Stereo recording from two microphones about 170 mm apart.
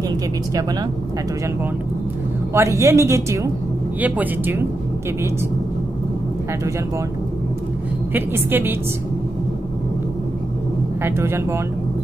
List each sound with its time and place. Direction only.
2.5 s a woman's voice: 15° right (ahead or behind)
8.1 s a woman's voice: 10° right (ahead or behind)
11.0 s a woman's voice: 15° right (ahead or behind)